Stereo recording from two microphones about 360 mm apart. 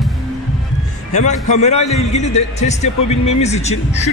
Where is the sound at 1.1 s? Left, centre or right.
Centre.